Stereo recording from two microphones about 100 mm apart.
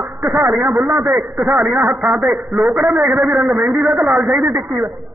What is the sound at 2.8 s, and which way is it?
Speech, 20° right (ahead or behind).